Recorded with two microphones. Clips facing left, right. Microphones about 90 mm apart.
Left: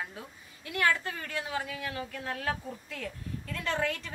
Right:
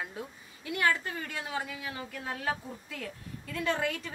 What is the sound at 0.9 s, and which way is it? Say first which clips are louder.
A woman's voice: left 1 dB; 25° right (ahead or behind).